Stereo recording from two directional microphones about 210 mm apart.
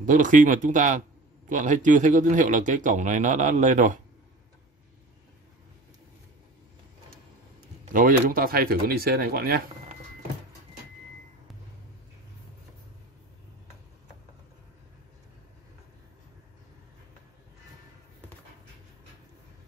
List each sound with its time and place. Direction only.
0.0 s speech: 40° right (ahead or behind)
7.8 s speech: 40° right (ahead or behind)